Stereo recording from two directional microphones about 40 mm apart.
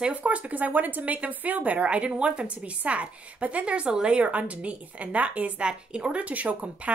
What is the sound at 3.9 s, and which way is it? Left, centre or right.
Speech, right.